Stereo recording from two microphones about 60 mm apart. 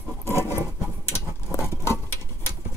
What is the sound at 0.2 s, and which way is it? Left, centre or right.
Patter, left.